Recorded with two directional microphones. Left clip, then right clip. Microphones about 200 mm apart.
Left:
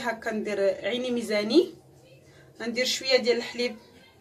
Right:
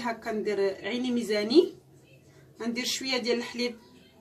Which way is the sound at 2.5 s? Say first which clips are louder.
Left 4 dB; 5° left (ahead or behind).